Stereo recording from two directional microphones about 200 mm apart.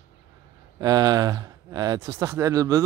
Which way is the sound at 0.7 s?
20° right (ahead or behind).